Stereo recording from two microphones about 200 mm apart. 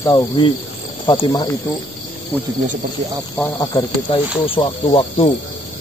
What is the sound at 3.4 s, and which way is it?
Speech, 15° left (ahead or behind).